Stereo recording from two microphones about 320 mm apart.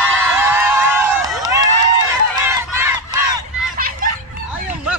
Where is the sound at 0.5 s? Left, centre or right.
Centre.